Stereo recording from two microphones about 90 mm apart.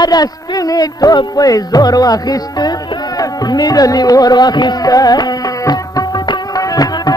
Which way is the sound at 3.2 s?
50° left (ahead or behind).